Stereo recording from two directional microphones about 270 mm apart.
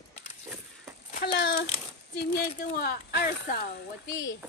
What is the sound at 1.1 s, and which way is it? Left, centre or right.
Speech, left.